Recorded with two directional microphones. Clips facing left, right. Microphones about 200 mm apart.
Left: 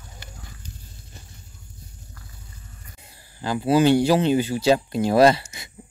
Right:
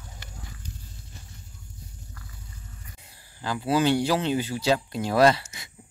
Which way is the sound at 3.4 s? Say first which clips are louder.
Left 5 dB; 10° left (ahead or behind).